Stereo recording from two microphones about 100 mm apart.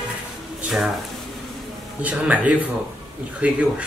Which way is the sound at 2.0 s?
15° right (ahead or behind).